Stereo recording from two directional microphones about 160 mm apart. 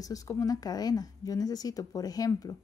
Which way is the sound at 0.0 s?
20° left (ahead or behind).